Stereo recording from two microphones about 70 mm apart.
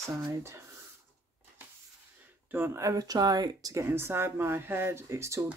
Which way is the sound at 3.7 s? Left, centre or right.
Right.